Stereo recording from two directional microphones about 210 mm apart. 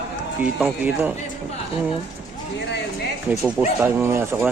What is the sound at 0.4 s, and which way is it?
Speech, 5° right (ahead or behind).